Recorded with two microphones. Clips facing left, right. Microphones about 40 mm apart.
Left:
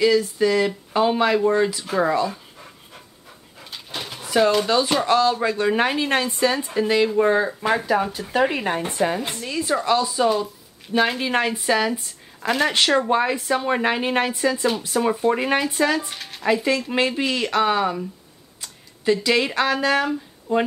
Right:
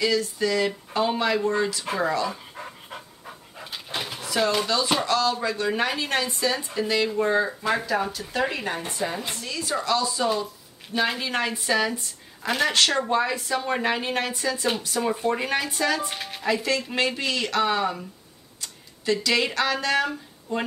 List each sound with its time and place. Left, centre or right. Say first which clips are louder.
0.0 s speech: left 6 dB; centre
3.7 s dog: right 1 dB; centre
4.2 s a sound: left 6 dB; centre
4.7 s speech: left 5 dB; left; by 12.7 s centre
12.7 s speech: left 4 dB; centre
16.1 s speech: right 2 dB; centre
16.6 s speech: left 4 dB; centre
18.6 s tick-tock: left 1 dB; centre
19.5 s speech: left 4 dB; centre